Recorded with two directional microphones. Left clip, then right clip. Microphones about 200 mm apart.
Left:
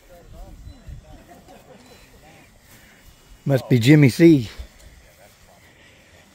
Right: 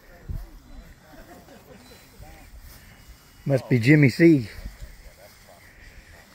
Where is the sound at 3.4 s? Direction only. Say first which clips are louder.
Left 3 dB; 20° left (ahead or behind).